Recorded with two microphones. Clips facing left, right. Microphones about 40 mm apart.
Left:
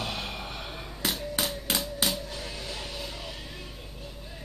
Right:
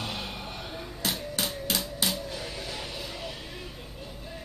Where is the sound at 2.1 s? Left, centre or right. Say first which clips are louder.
Right 1 dB; centre.